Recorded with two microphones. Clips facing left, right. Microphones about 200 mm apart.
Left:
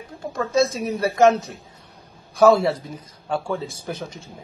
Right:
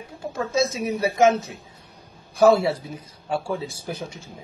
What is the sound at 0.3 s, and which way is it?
Speech, centre (ahead or behind).